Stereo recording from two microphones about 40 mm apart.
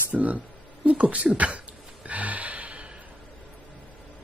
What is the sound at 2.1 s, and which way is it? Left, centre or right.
Gasp, right.